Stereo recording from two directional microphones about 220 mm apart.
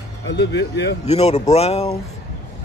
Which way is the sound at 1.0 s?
30° left (ahead or behind).